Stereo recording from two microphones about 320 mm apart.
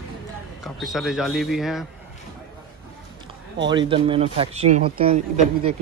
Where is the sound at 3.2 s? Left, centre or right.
Centre.